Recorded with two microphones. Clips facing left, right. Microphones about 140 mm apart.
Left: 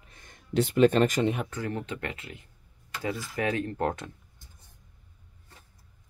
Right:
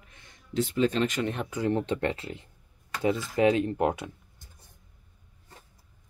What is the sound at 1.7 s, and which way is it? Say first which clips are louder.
Speech: right 7 dB; 30° right (ahead or behind).